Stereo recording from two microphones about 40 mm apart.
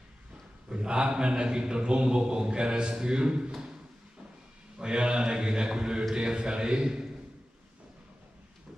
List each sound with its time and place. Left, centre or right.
0.7 s a man's voice: right
4.7 s a man's voice: right